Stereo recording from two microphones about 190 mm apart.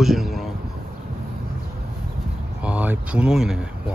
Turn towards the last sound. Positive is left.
turn(degrees=-5)  # may be behind; listen again after turning